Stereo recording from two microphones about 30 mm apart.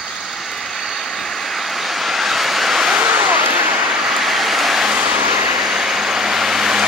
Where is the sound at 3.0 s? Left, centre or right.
Right.